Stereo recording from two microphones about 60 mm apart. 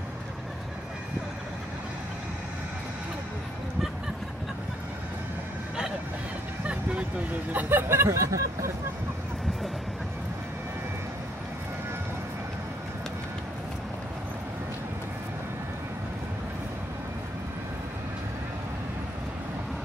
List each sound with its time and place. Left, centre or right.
6.6 s vehicle: centre
7.5 s a sound: right
8.1 s speech: right